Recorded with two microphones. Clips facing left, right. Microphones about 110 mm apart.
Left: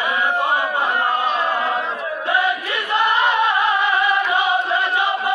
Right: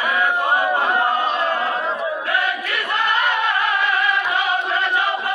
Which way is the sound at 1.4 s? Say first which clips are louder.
Even; centre (ahead or behind).